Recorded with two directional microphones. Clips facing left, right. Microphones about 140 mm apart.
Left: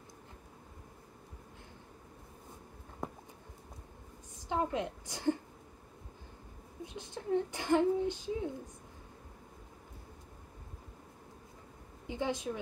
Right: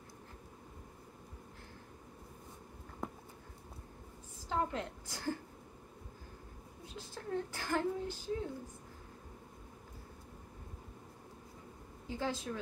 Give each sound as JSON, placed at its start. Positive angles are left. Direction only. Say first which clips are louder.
{"t": 4.5, "sound": "speech", "louder": "left 3 dB", "side_deg": 20}
{"t": 6.9, "sound": "speech", "louder": "left 6 dB", "side_deg": 20}
{"t": 12.1, "sound": "speech", "louder": "left 3 dB", "side_deg": 20}